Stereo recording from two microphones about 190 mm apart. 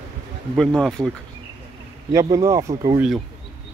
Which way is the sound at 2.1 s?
15° right (ahead or behind).